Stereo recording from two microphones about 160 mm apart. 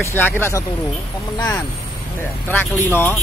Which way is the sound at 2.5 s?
10° left (ahead or behind).